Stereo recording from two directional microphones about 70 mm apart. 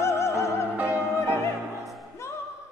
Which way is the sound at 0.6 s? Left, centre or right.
Right.